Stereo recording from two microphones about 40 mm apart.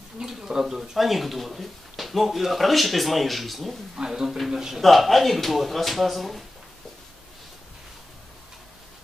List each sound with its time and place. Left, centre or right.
0.2 s speech: centre
3.9 s speech: centre
4.8 s speech: centre